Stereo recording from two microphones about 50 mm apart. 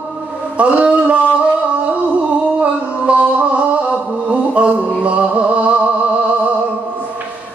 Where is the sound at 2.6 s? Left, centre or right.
Right.